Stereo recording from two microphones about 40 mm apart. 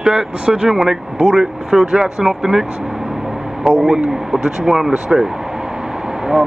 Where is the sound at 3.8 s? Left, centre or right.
Centre.